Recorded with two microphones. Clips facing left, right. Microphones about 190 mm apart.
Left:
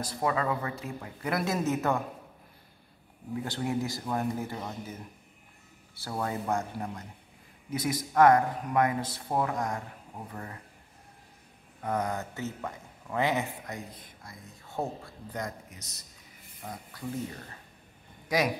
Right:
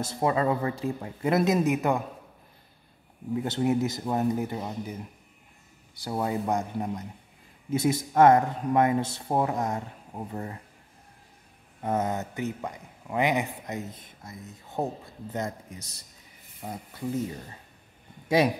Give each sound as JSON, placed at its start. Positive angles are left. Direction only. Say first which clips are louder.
{"t": 0.0, "sound": "speech", "louder": "right 4 dB", "side_deg": -25}
{"t": 3.4, "sound": "speech", "louder": "right 6 dB", "side_deg": -20}
{"t": 5.9, "sound": "speech", "louder": "right 4 dB", "side_deg": -15}
{"t": 11.8, "sound": "speech", "louder": "right 3 dB", "side_deg": -25}